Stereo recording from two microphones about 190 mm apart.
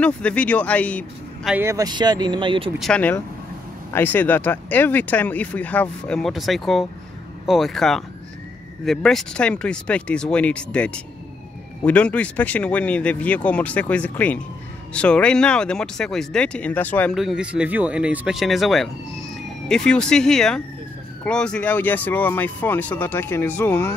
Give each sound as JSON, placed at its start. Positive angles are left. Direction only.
{"t": 0.0, "sound": "speech", "side_deg": 5}
{"t": 1.5, "sound": "speech", "side_deg": -15}
{"t": 2.8, "sound": "speech", "side_deg": 5}
{"t": 17.2, "sound": "speech", "side_deg": -5}